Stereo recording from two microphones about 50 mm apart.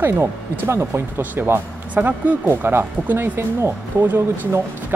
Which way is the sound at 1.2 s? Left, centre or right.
Right.